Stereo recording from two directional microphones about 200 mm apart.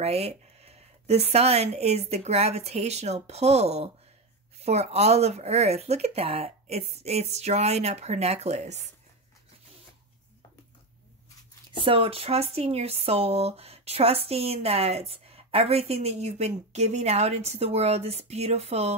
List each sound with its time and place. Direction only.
0.0 s speech: 30° right (ahead or behind)
11.8 s speech: 25° right (ahead or behind)